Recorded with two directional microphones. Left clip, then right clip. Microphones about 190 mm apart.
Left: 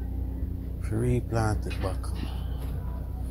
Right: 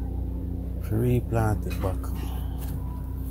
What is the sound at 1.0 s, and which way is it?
Speech, 15° right (ahead or behind).